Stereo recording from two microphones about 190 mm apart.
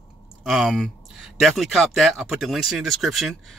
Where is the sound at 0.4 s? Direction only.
Centre (ahead or behind).